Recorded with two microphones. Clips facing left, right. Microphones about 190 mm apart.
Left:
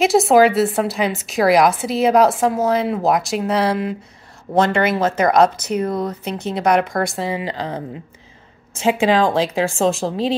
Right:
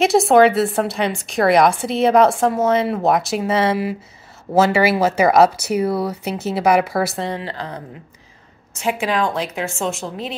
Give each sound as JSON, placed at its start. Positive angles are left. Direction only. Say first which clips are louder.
{"t": 0.0, "sound": "a woman's voice", "louder": "even", "side_deg": 0}
{"t": 7.4, "sound": "speech", "louder": "left 4 dB", "side_deg": 20}